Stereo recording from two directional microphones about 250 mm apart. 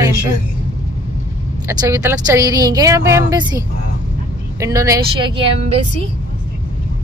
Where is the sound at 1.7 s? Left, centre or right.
Centre.